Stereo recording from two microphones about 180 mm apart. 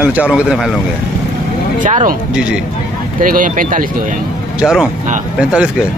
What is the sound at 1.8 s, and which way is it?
Speech, 45° right (ahead or behind).